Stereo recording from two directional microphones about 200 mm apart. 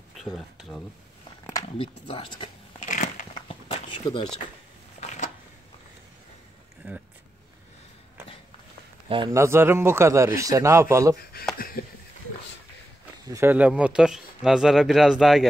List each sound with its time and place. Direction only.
0.2 s speech: centre (ahead or behind)
1.4 s a sound: 15° left (ahead or behind)
1.8 s speech: 25° left (ahead or behind)
2.8 s crushing: 40° left (ahead or behind)
3.4 s a sound: 25° left (ahead or behind)
5.0 s a sound: 35° left (ahead or behind)
9.1 s speech: 20° right (ahead or behind)
11.8 s speech: 45° left (ahead or behind)
13.3 s speech: 10° right (ahead or behind)